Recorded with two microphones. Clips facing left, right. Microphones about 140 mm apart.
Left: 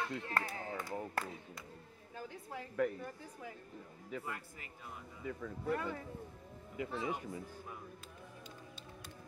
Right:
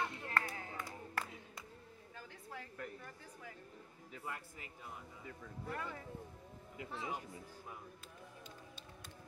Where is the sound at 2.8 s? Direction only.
90° left.